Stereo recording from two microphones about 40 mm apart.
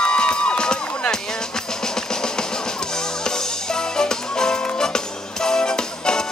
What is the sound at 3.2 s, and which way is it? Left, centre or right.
Music, centre.